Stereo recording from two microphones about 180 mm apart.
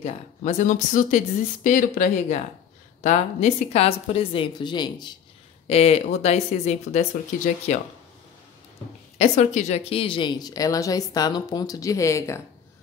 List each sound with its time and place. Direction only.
0.0 s a woman's voice: 40° left (ahead or behind); by 5.2 s 25° left (ahead or behind)
5.7 s a woman's voice: 35° left (ahead or behind)
9.2 s a woman's voice: 40° left (ahead or behind); by 12.4 s 15° left (ahead or behind)